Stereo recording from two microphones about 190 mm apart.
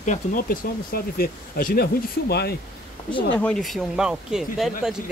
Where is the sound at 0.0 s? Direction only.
40° left (ahead or behind).